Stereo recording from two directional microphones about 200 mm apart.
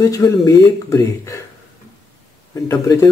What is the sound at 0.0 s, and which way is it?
Speech, 15° left (ahead or behind).